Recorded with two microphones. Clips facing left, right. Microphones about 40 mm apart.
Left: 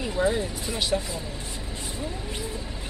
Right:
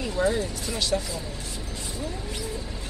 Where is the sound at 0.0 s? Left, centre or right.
Centre.